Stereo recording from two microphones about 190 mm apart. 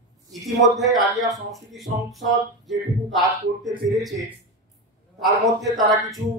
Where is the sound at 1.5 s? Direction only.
Centre (ahead or behind).